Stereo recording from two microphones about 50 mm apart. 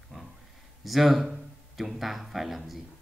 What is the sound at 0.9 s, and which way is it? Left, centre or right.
A man's voice, centre.